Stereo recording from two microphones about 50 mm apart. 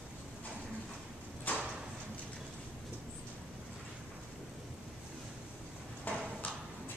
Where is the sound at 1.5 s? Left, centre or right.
Left.